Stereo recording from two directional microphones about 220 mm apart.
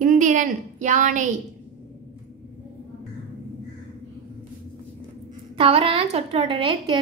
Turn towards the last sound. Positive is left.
turn(degrees=-20)  # may be behind; listen again after turning